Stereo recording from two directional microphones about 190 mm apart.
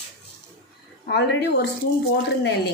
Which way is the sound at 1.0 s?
60° left (ahead or behind).